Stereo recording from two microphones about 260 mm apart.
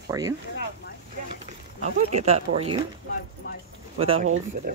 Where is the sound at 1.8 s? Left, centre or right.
Right.